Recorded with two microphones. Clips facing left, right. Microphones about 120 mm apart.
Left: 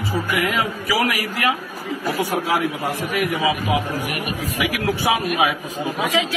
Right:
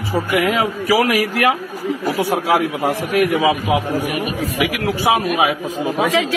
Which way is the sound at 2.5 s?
90° right.